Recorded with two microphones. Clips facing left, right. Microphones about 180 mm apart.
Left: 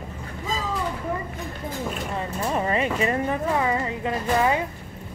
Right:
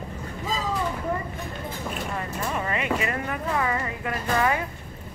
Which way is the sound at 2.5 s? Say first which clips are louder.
Left 3 dB; 30° left (ahead or behind).